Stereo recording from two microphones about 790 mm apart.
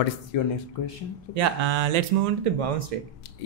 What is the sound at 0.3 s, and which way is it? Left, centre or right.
Speech, left.